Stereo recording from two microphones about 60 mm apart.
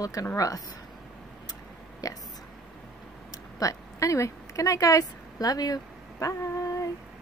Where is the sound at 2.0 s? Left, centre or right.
Left.